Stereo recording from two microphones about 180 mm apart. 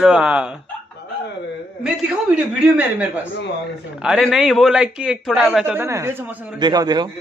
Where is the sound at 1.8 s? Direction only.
5° right (ahead or behind); by 7.1 s 20° right (ahead or behind).